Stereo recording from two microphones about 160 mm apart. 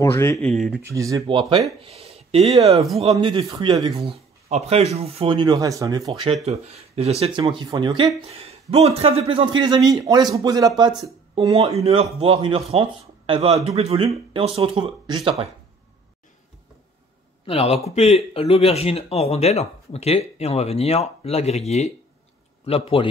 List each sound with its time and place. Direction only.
0.0 s speech: 15° left (ahead or behind)
0.5 s speech: centre (ahead or behind)
0.8 s a man's voice: 20° right (ahead or behind)
1.8 s speech: 40° right (ahead or behind); by 4.1 s 25° right (ahead or behind)
4.5 s speech: 45° right (ahead or behind); by 6.3 s 25° right (ahead or behind)
6.4 s a man's voice: 40° right (ahead or behind); by 10.9 s 25° right (ahead or behind)
11.5 s speech: 40° right (ahead or behind)
17.5 s speech: 40° left (ahead or behind)